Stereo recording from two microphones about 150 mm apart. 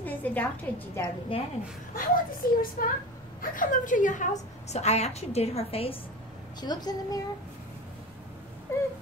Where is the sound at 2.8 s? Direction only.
70° left (ahead or behind); by 5.9 s 40° left (ahead or behind).